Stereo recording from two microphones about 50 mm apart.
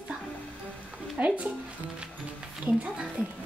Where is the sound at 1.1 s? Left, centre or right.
Right.